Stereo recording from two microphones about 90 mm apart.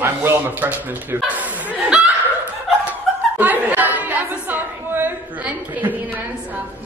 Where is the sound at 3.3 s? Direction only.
20° right (ahead or behind).